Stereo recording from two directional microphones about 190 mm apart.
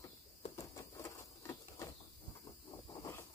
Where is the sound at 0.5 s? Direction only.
15° left (ahead or behind).